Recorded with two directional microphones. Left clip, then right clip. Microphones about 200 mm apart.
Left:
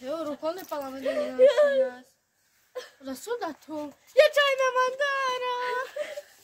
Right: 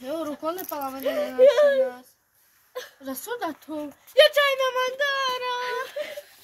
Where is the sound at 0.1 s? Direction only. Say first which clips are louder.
Right 2 dB; centre (ahead or behind).